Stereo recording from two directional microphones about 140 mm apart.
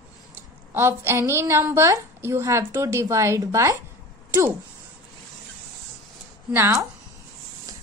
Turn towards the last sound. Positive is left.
turn(degrees=-20)  # may be behind; listen again after turning